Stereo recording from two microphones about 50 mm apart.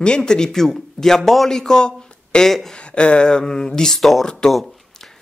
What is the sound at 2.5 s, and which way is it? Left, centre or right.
Speech, centre.